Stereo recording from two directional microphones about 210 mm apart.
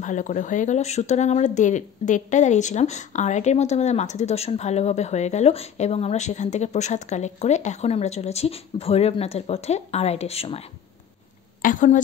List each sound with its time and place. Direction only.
0.0 s speech: 35° left (ahead or behind)
11.6 s speech: 40° left (ahead or behind)